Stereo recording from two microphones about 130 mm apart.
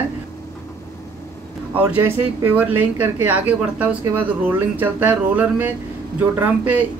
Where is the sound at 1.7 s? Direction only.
10° right (ahead or behind).